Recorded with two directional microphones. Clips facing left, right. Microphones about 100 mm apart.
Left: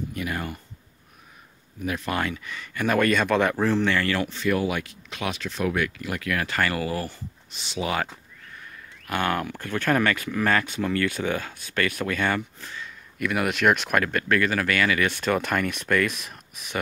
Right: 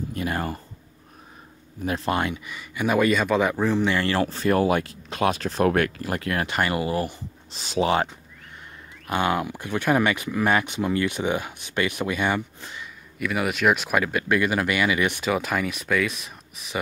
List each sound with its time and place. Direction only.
0.1 s speech: 35° right (ahead or behind)
1.8 s speech: 30° right (ahead or behind)
2.4 s speech: 10° right (ahead or behind)
3.8 s speech: 20° right (ahead or behind)
4.1 s speech: 35° right (ahead or behind)
6.4 s speech: 20° right (ahead or behind)
7.5 s speech: 40° right (ahead or behind)
9.0 s speech: 20° right (ahead or behind)
12.5 s a sound: 15° right (ahead or behind)
13.2 s speech: centre (ahead or behind)